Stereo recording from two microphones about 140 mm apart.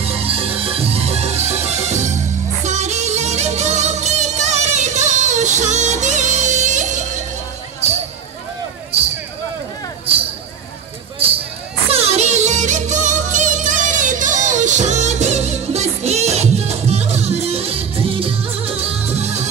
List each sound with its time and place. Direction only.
0.0 s music: 45° right (ahead or behind); by 7.1 s 60° right (ahead or behind)
7.8 s basketball bounce: 50° right (ahead or behind)
11.9 s music: 50° right (ahead or behind)